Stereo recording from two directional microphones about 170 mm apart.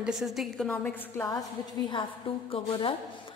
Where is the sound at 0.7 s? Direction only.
10° left (ahead or behind).